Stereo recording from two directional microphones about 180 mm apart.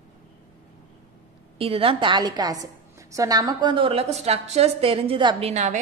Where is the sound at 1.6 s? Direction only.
30° right (ahead or behind).